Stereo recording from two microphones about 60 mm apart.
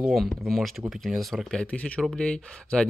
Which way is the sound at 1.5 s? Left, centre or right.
Left.